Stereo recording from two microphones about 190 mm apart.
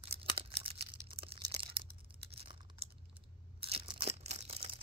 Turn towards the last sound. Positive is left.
turn(degrees=-30)  # may be behind; listen again after turning